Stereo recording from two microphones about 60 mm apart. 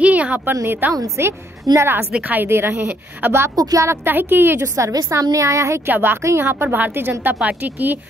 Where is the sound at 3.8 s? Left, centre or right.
Right.